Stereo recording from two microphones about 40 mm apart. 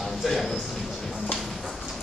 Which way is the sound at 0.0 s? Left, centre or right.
Centre.